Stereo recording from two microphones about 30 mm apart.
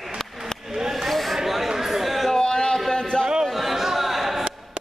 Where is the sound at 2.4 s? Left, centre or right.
Left.